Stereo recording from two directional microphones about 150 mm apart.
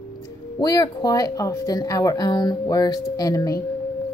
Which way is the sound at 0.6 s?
25° left (ahead or behind).